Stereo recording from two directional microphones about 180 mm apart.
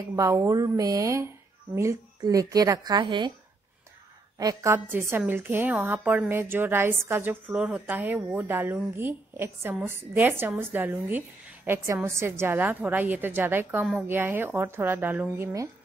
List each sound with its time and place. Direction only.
0.1 s a woman's voice: 15° right (ahead or behind)
4.4 s a woman's voice: 20° right (ahead or behind)